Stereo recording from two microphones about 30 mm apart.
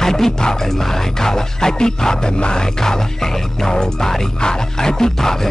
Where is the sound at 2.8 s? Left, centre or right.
Centre.